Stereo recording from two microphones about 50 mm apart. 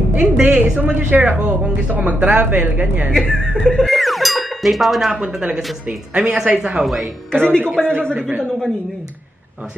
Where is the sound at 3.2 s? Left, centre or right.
Centre.